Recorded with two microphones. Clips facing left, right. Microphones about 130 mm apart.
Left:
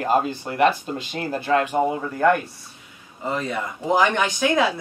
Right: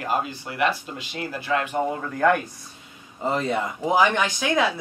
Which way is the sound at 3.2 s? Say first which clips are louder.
Right 2 dB; 30° right (ahead or behind).